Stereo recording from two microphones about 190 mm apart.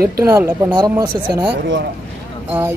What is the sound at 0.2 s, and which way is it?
Speech, 15° right (ahead or behind).